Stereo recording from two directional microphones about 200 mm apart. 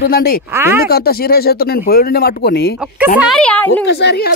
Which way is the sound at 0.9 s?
50° left (ahead or behind).